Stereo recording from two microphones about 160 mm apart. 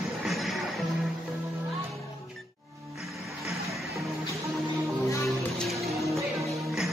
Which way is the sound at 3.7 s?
Centre (ahead or behind).